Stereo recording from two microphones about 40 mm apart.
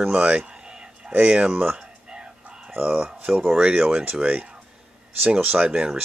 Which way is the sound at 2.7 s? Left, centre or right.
Right.